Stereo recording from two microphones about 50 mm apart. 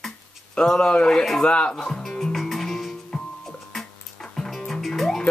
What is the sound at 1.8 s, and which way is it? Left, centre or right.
Music, centre.